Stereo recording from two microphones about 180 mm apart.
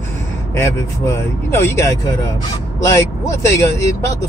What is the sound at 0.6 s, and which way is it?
Speech, 15° left (ahead or behind).